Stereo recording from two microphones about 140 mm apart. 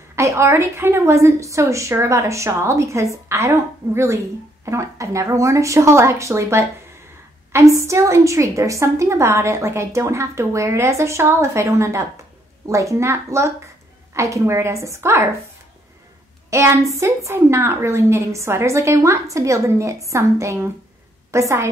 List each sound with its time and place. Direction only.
0.1 s a woman's voice: 20° right (ahead or behind)
16.4 s a woman's voice: 20° right (ahead or behind)